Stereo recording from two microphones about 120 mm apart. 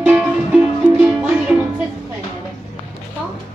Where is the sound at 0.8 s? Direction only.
90° right.